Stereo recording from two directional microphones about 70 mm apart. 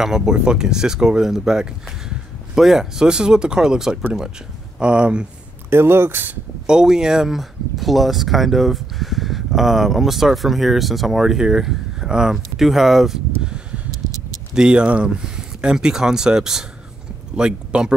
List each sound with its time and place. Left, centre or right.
0.0 s speech: centre
5.7 s speech: right
6.7 s speech: centre